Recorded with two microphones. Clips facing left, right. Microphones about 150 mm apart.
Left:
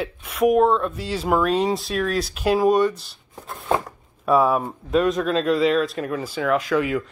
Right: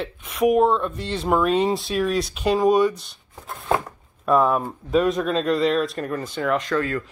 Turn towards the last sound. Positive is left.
turn(degrees=15)  # may be behind; listen again after turning